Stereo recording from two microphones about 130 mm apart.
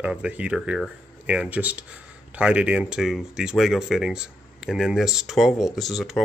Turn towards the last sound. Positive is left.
turn(degrees=0)  # may be behind; listen again after turning